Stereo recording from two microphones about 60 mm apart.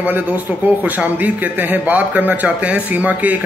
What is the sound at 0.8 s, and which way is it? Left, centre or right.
Speech, right.